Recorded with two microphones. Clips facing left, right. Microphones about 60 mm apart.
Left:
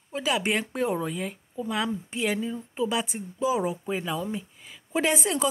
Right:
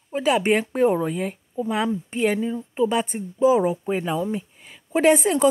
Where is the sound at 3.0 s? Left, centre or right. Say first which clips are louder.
Right 8 dB; right.